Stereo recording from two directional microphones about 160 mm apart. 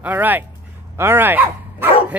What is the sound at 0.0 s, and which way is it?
Speech, 10° right (ahead or behind).